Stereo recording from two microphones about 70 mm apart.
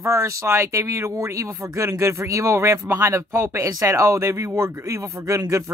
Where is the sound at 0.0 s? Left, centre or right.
Right.